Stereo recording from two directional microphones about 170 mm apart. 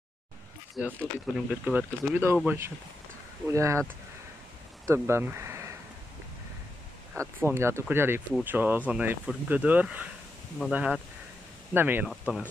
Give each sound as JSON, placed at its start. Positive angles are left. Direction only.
{"t": 0.7, "sound": "speech", "side_deg": -5}
{"t": 7.2, "sound": "speech", "side_deg": -15}